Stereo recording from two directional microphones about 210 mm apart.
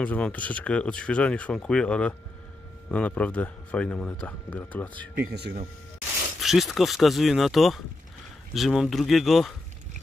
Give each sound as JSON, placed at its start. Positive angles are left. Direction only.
{"t": 0.0, "sound": "speech", "side_deg": 5}
{"t": 5.3, "sound": "speech", "side_deg": -50}
{"t": 6.4, "sound": "speech", "side_deg": 0}